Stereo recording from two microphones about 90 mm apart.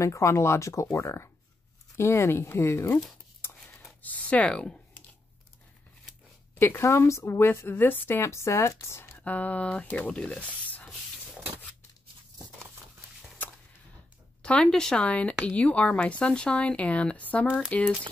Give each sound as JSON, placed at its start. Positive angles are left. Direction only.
{"t": 0.0, "sound": "a woman's voice", "side_deg": 35}
{"t": 4.0, "sound": "speech", "side_deg": 15}
{"t": 6.6, "sound": "a woman's voice", "side_deg": 30}
{"t": 9.2, "sound": "speech", "side_deg": 15}
{"t": 14.4, "sound": "speech", "side_deg": 10}